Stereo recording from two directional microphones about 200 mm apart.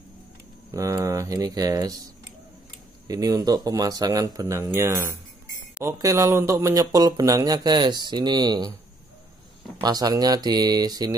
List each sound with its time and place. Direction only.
0.7 s speech: 15° right (ahead or behind)
3.1 s speech: 20° right (ahead or behind)
9.8 s speech: 20° right (ahead or behind)